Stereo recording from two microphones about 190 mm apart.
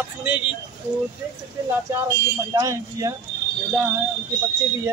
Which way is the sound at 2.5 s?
15° right (ahead or behind).